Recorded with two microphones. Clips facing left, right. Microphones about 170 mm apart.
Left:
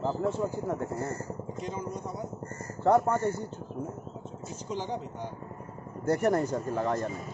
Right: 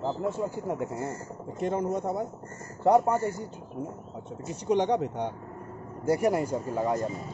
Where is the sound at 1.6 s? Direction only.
65° right (ahead or behind).